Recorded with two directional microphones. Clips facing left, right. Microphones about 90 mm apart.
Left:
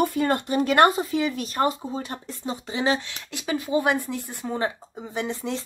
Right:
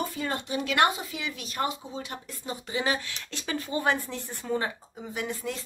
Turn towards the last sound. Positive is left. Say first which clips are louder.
# left 5 dB
turn(degrees=25)  # may be behind; listen again after turning